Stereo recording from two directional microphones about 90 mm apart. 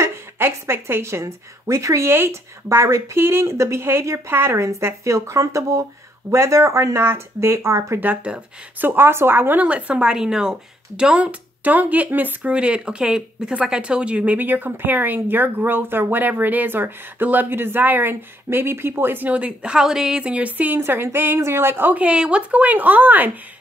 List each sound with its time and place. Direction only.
0.0 s a woman's voice: 30° right (ahead or behind)
8.1 s a woman's voice: 15° right (ahead or behind)